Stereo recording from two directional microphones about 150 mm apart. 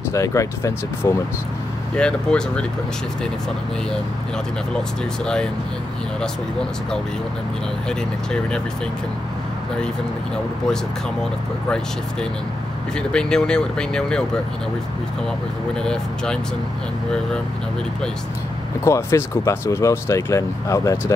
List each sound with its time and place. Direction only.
0.1 s speech: 20° left (ahead or behind)
2.0 s speech: 5° left (ahead or behind)
4.7 s speech: 5° left (ahead or behind)
13.1 s speech: 5° left (ahead or behind)
15.8 s speech: 5° left (ahead or behind)
18.9 s speech: 20° left (ahead or behind)